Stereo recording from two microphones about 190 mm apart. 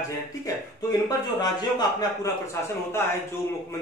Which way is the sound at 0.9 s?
20° left (ahead or behind).